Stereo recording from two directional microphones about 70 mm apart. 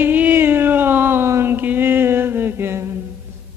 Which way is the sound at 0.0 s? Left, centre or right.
Right.